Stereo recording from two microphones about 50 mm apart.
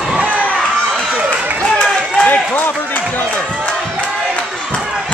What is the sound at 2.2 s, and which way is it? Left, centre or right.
Run, left.